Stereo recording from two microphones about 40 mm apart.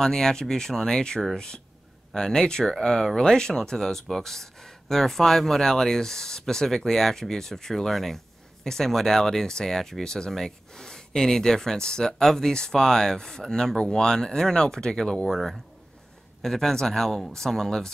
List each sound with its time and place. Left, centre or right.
0.0 s speech: centre